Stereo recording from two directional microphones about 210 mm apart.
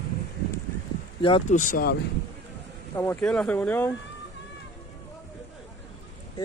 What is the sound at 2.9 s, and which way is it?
Speech, 10° left (ahead or behind).